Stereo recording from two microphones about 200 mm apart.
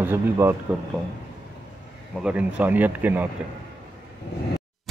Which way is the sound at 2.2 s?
5° right (ahead or behind).